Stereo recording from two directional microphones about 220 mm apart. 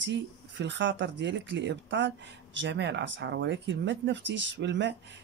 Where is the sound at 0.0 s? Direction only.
55° right (ahead or behind).